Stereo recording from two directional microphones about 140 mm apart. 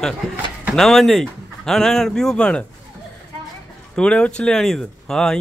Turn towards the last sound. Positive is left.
turn(degrees=5)  # may be behind; listen again after turning